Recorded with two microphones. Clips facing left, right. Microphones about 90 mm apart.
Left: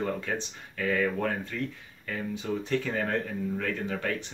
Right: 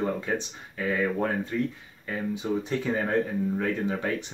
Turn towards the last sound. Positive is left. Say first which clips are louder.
# right 3 dB
turn(degrees=-20)  # may be behind; listen again after turning